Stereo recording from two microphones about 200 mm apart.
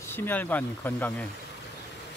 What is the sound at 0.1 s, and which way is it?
Speech, 10° left (ahead or behind).